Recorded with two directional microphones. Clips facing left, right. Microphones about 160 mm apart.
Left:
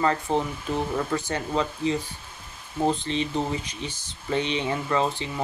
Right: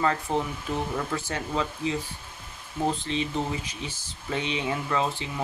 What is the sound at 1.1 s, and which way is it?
Speech, centre (ahead or behind).